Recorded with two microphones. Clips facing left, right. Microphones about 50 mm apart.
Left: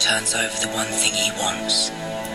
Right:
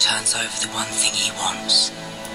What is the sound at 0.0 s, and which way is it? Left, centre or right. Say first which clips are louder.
Speech: left 2 dB; left.